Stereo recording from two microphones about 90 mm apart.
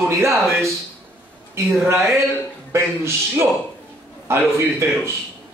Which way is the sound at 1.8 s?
30° right (ahead or behind).